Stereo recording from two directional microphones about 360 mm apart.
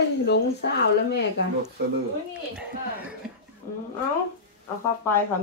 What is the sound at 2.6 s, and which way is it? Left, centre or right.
Speech, centre.